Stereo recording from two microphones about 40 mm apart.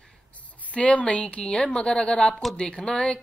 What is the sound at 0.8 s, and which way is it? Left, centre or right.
Speech, left.